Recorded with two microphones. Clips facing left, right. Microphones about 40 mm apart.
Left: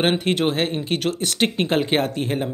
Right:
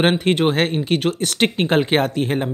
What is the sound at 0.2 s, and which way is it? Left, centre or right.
Speech, right.